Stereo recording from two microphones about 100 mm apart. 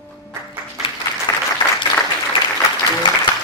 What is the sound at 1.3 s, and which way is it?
Applause, 35° left (ahead or behind).